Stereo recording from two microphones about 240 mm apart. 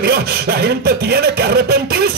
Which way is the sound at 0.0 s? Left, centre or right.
Right.